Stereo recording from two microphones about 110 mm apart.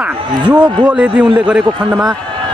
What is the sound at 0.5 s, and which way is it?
A man's voice, 10° right (ahead or behind).